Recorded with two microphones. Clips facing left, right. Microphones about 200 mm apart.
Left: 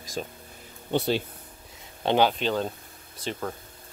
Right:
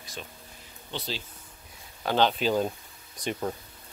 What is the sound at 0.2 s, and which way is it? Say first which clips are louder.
Speech: left 9 dB; 40° left (ahead or behind).